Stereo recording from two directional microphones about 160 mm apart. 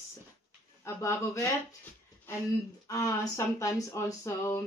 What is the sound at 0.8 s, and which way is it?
Speech, 15° left (ahead or behind).